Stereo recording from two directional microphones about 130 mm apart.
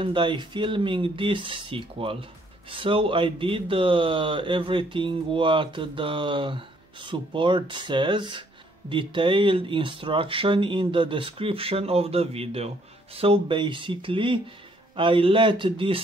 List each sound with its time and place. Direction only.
0.0 s speech: 40° right (ahead or behind)